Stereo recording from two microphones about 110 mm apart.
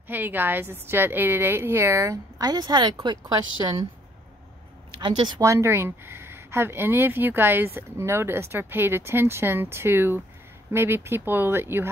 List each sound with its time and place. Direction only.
0.1 s speech: 15° right (ahead or behind); by 3.2 s 40° right (ahead or behind)
4.9 s speech: 45° right (ahead or behind)
5.4 s speech: 25° right (ahead or behind)